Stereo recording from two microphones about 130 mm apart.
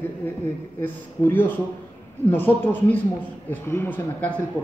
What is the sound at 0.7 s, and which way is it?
A man's voice, 15° left (ahead or behind).